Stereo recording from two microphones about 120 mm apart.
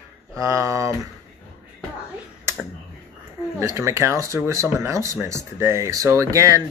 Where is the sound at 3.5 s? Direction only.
25° right (ahead or behind).